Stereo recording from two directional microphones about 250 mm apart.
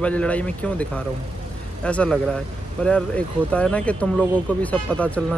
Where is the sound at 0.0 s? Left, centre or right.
Centre.